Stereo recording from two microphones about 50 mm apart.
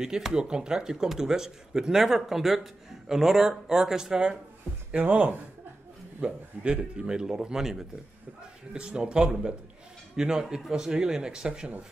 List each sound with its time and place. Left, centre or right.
0.0 s speech: centre
4.9 s speech: right; by 7.8 s centre
8.7 s speech: centre